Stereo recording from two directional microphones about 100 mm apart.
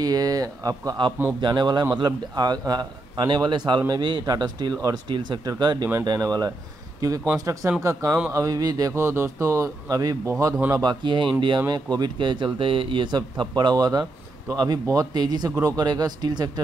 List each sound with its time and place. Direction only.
0.0 s speech: 40° right (ahead or behind)